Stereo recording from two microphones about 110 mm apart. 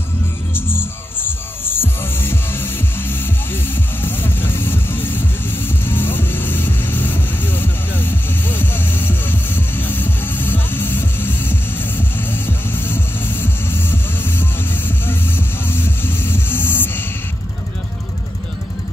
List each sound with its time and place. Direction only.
1.6 s music: 20° left (ahead or behind)